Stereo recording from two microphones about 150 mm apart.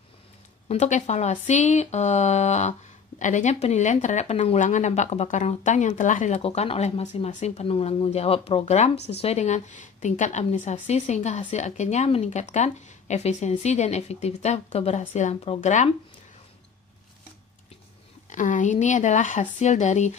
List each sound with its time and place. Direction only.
0.7 s speech: 50° left (ahead or behind)
18.3 s a woman's voice: 60° left (ahead or behind)